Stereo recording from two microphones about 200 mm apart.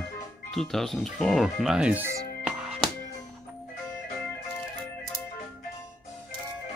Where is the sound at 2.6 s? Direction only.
Centre (ahead or behind).